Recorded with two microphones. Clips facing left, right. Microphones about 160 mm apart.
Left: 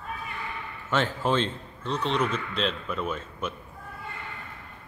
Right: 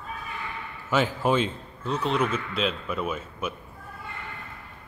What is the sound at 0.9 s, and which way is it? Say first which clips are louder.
A man's voice: right 2 dB; 10° right (ahead or behind).